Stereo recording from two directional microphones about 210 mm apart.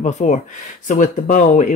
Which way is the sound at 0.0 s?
35° left (ahead or behind).